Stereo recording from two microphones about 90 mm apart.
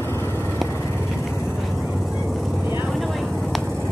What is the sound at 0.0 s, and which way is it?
Vehicle, 25° left (ahead or behind).